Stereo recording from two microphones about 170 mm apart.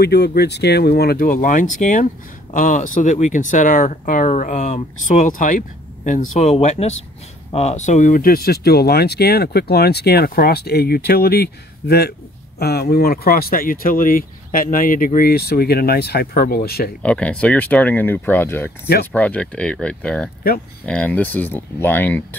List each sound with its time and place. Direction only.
0.0 s speech: 70° left (ahead or behind)
17.0 s speech: 5° left (ahead or behind)